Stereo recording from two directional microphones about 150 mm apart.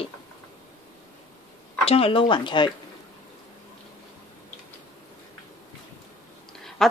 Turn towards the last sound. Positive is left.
turn(degrees=5)  # may be behind; listen again after turning